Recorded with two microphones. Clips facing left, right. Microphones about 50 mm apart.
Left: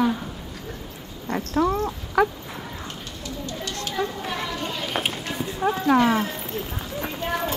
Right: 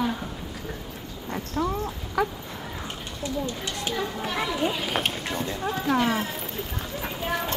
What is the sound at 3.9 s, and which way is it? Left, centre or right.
A child's voice, centre.